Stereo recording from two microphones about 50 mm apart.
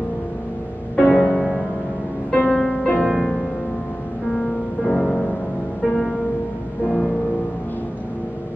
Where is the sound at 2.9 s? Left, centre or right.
Centre.